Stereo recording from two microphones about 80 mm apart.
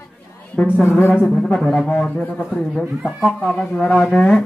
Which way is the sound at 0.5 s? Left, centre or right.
Left.